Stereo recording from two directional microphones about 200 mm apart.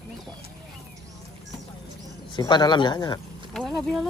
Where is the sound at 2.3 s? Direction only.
20° left (ahead or behind).